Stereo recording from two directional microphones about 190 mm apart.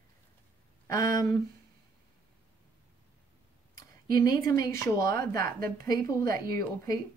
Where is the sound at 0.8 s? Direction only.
15° left (ahead or behind).